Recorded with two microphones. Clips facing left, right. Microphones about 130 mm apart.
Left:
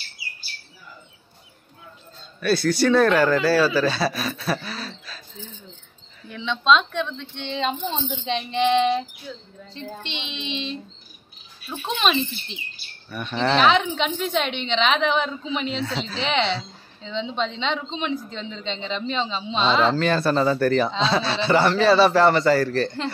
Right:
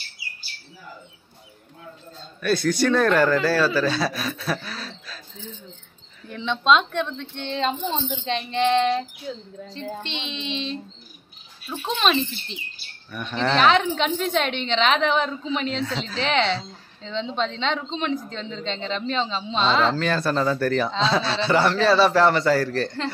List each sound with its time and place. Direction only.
2.4 s speech: 5° left (ahead or behind)
6.4 s a woman's voice: 10° right (ahead or behind)
7.5 s speech: centre (ahead or behind)
9.3 s child singing: 35° right (ahead or behind)
11.8 s speech: centre (ahead or behind)